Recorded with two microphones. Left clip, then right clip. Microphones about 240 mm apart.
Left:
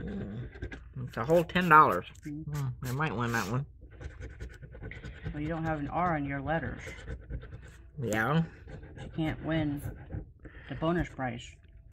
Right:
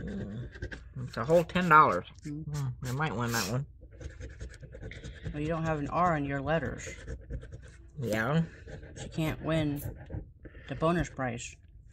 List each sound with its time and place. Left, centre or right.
0.0 s dog: centre
5.4 s speech: right
8.0 s speech: centre
9.1 s speech: right
10.8 s speech: right